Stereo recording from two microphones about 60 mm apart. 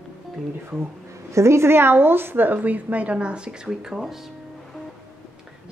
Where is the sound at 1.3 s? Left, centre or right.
Right; by 3.5 s centre.